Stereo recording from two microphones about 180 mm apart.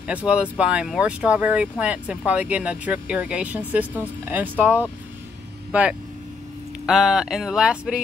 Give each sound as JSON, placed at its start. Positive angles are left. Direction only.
{"t": 0.0, "sound": "speech", "side_deg": -5}